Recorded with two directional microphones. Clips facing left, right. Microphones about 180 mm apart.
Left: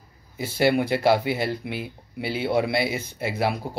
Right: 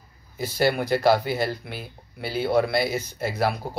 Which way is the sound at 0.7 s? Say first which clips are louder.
Left 1 dB; 20° left (ahead or behind).